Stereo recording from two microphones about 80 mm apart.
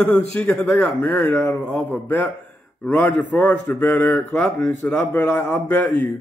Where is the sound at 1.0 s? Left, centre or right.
Left.